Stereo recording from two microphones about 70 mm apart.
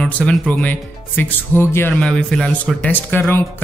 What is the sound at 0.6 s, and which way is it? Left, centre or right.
Speech, left.